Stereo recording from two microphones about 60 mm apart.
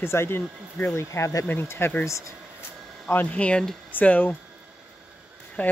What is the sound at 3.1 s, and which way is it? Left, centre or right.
Speech, left.